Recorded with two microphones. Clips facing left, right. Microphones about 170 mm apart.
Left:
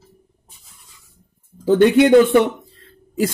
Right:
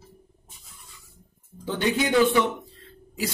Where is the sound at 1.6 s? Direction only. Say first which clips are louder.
Left 13 dB; 55° left (ahead or behind).